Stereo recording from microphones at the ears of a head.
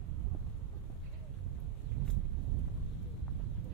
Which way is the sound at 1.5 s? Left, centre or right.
Right.